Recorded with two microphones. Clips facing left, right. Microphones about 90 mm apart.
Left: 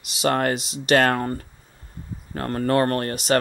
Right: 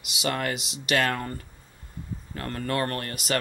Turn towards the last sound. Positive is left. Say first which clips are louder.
# left 8 dB
turn(degrees=35)  # may be behind; listen again after turning